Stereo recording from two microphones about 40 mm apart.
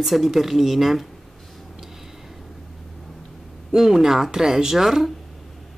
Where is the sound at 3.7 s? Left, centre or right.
Centre.